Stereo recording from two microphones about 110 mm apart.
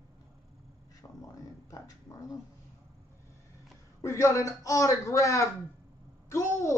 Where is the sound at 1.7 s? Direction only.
30° left (ahead or behind).